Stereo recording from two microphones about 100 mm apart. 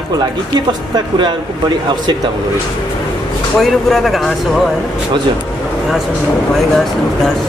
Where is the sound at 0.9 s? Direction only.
50° right (ahead or behind).